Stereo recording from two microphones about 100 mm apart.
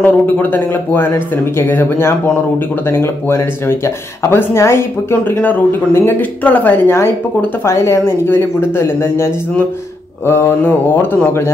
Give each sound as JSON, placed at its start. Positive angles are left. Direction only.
{"t": 0.0, "sound": "speech", "side_deg": 20}